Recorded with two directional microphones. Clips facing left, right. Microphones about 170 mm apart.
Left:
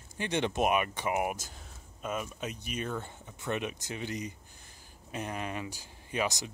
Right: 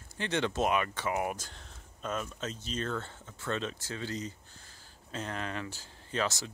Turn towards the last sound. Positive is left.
turn(degrees=15)  # may be behind; listen again after turning